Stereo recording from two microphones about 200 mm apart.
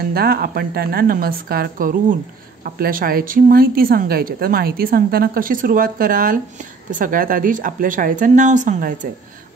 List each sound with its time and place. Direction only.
0.1 s a woman's voice: 50° right (ahead or behind)